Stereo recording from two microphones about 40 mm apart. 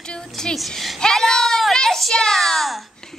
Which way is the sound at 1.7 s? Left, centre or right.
Centre.